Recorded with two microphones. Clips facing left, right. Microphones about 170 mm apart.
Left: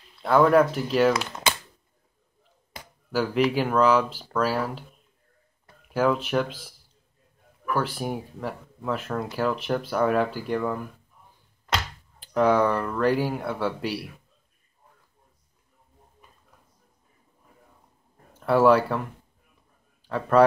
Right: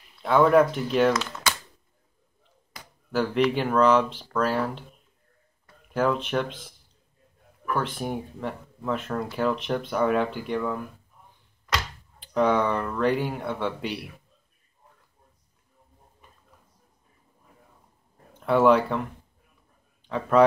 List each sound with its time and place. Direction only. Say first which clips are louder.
0.2 s speech: even; centre (ahead or behind)
1.2 s speech: left 2 dB; 15° left (ahead or behind)
3.1 s speech: even; 5° left (ahead or behind)
5.9 s speech: left 1 dB; 5° left (ahead or behind)
7.7 s speech: left 1 dB; 5° left (ahead or behind)
12.2 s speech: left 2 dB; 5° left (ahead or behind)
18.4 s speech: left 1 dB; 5° left (ahead or behind)
20.1 s speech: left 1 dB; 5° left (ahead or behind)